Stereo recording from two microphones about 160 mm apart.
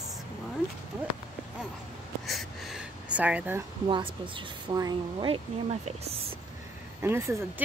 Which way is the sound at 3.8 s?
30° right (ahead or behind).